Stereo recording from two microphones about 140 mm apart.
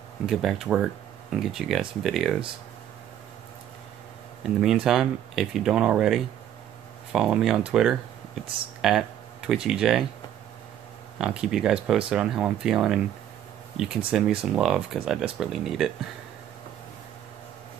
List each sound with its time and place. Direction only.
0.3 s speech: centre (ahead or behind)
4.4 s speech: 5° right (ahead or behind)
11.1 s speech: 5° right (ahead or behind)